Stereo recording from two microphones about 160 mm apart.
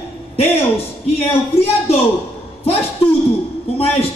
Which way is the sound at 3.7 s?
40° left (ahead or behind).